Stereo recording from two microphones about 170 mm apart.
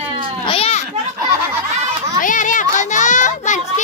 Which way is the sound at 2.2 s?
50° left (ahead or behind).